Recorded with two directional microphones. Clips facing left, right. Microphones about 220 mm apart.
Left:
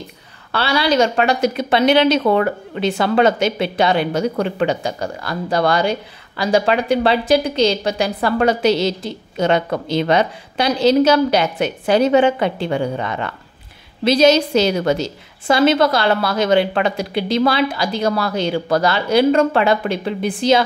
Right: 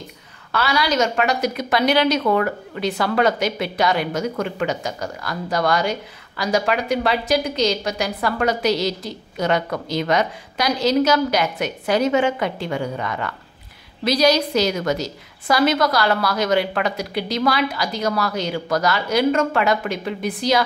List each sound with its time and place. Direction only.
0.5 s a woman's voice: 30° left (ahead or behind)